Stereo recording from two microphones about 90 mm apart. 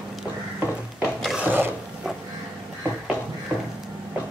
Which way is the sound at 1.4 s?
20° right (ahead or behind).